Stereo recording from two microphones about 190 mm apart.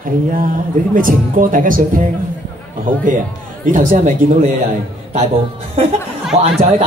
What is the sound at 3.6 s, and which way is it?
Speech, 45° right (ahead or behind).